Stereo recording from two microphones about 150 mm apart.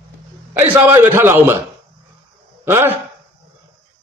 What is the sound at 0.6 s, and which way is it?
A man's voice, 15° right (ahead or behind).